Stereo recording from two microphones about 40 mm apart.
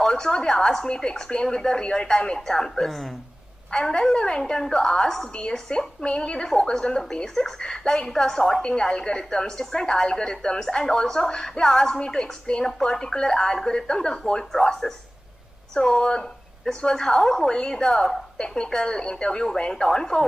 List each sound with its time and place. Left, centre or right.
0.0 s a woman's voice: centre
3.7 s a woman's voice: centre
8.6 s a woman's voice: left